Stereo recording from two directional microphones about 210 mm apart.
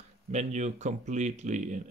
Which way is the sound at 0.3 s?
35° right (ahead or behind).